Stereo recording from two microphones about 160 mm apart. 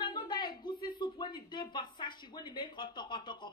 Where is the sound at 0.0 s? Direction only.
30° left (ahead or behind).